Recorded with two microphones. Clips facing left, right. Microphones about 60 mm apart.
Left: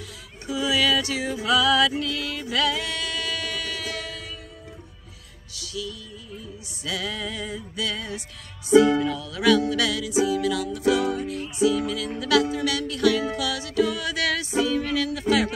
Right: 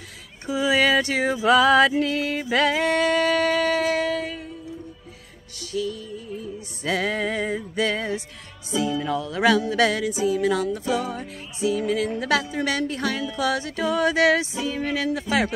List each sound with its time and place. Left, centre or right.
0.5 s a sound: right
1.4 s music: right
5.6 s music: right